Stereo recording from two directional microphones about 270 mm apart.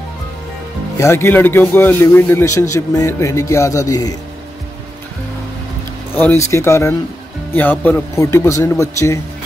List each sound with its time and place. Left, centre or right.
0.9 s a man's voice: centre
6.1 s a man's voice: centre